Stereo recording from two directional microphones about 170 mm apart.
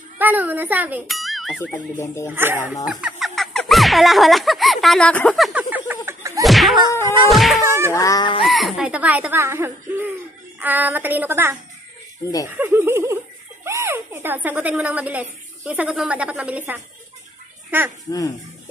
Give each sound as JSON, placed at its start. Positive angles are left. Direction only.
{"t": 0.2, "sound": "speech", "side_deg": -10}
{"t": 2.2, "sound": "speech", "side_deg": -10}
{"t": 6.4, "sound": "a sound", "side_deg": 0}
{"t": 7.2, "sound": "insect", "side_deg": 0}
{"t": 7.6, "sound": "speech", "side_deg": -15}
{"t": 7.9, "sound": "a sound", "side_deg": 20}
{"t": 8.5, "sound": "speech", "side_deg": 0}